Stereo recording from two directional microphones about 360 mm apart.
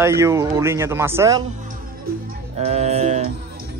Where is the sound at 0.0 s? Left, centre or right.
Centre.